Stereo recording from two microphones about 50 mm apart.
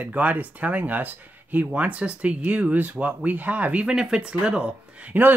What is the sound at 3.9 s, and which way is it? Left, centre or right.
Speech, centre.